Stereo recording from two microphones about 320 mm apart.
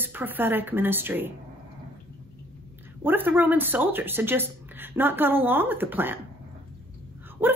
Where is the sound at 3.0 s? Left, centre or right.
Centre.